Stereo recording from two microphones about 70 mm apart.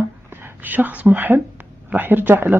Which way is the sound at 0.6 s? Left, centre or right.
Right.